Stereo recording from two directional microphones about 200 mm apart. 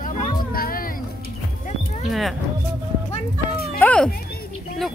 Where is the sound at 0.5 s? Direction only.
45° left (ahead or behind).